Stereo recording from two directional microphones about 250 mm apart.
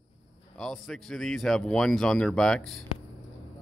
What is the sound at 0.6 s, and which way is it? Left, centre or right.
A man's voice, centre.